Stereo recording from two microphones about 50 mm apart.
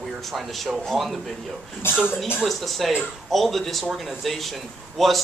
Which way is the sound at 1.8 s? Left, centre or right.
Left.